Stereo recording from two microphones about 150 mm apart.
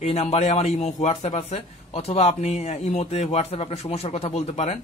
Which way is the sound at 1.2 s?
35° left (ahead or behind).